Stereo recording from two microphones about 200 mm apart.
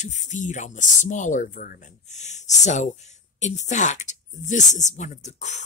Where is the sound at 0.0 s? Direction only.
35° left (ahead or behind).